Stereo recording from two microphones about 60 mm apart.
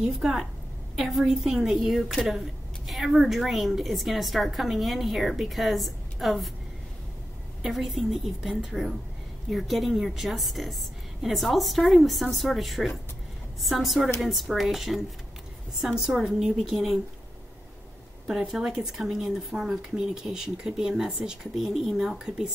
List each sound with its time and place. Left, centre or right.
0.0 s a woman's voice: centre
7.6 s a woman's voice: centre
18.2 s speech: centre
18.5 s speech: centre